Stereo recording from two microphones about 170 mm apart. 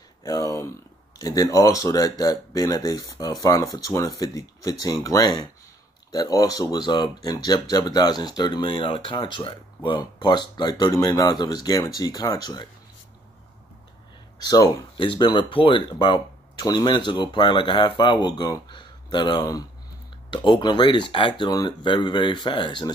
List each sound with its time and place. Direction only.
0.2 s speech: 20° left (ahead or behind)
14.4 s speech: 25° left (ahead or behind)